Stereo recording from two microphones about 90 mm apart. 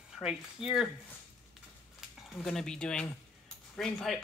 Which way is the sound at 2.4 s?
5° left (ahead or behind).